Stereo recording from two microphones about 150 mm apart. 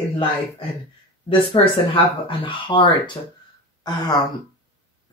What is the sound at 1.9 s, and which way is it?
Speech, 35° left (ahead or behind).